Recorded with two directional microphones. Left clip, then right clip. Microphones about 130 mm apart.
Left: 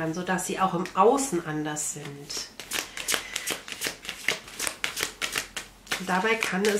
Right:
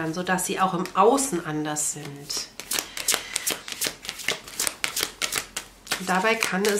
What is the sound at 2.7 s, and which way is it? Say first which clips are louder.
Shuffling cards: right 2 dB; 15° right (ahead or behind).